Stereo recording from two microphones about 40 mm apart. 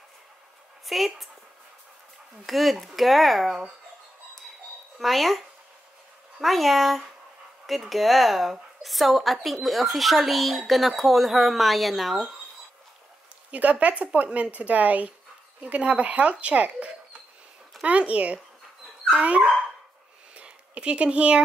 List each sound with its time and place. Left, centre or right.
0.8 s speech: centre
2.4 s speech: centre
4.9 s speech: centre
6.4 s speech: centre
13.5 s speech: right
20.3 s a sound: right